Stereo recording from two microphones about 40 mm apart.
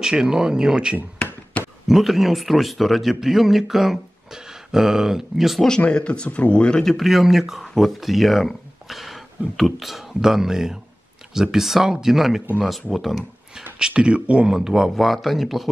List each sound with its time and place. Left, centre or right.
0.0 s speech: centre
1.9 s a man's voice: centre
5.9 s speech: left
7.0 s a man's voice: centre
13.7 s speech: right
14.5 s speech: centre
15.0 s a man's voice: centre